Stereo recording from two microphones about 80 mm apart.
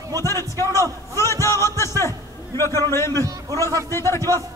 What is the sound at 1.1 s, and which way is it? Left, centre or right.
Music, left.